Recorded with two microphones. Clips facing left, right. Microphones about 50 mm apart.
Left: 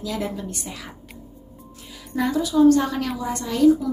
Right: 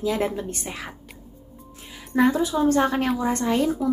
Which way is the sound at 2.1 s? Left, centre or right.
Right.